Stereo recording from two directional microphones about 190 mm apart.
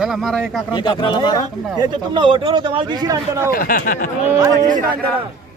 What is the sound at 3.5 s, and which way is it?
Speech, 45° left (ahead or behind).